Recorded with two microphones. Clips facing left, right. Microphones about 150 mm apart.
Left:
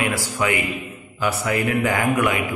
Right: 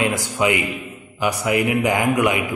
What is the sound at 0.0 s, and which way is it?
A man's voice, 20° right (ahead or behind).